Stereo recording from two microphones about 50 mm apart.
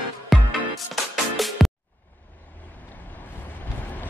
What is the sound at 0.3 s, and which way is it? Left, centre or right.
Music, centre.